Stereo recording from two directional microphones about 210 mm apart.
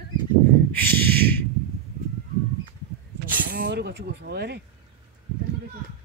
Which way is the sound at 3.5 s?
55° right (ahead or behind).